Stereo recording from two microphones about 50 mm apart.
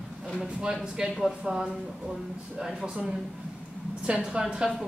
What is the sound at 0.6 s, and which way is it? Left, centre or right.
A man's voice, centre.